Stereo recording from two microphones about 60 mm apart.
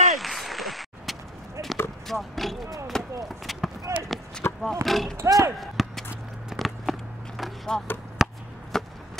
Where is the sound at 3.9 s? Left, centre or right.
Right.